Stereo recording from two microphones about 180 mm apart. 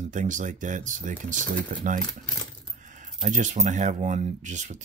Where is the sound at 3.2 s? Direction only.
45° right (ahead or behind).